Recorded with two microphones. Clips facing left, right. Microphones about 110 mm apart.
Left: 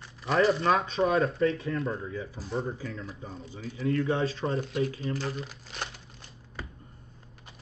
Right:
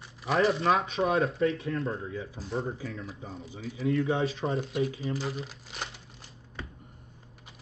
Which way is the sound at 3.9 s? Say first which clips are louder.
Even; 25° right (ahead or behind).